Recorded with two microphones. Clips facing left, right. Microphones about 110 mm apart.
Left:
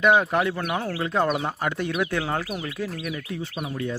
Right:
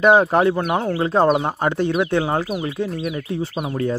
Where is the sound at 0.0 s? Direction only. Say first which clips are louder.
Right 6 dB; 35° right (ahead or behind).